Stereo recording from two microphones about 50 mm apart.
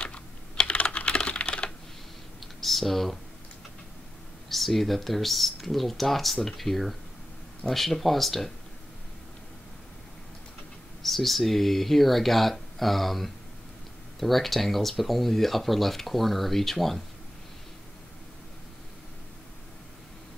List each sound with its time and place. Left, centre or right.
0.0 s typing: left
2.4 s typing: centre
4.5 s speech: centre
11.0 s speech: centre